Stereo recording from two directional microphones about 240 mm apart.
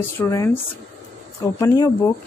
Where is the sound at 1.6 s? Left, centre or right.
Centre.